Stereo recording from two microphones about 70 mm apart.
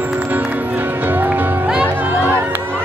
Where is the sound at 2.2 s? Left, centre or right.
Right.